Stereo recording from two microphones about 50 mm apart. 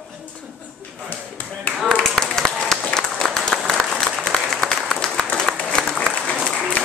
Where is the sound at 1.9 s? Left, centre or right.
Centre.